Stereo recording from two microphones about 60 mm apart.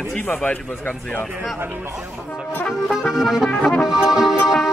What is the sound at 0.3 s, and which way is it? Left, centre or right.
Music, left.